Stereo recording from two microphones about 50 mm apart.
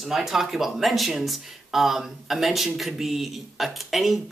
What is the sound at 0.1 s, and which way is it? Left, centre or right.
Speech, centre.